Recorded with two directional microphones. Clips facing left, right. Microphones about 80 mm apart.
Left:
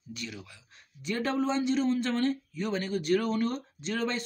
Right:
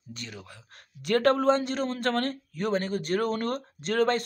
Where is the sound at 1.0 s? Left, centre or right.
Right.